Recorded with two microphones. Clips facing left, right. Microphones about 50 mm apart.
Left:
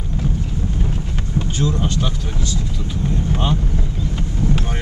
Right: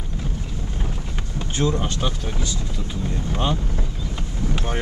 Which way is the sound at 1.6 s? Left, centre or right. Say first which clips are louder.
Even; centre.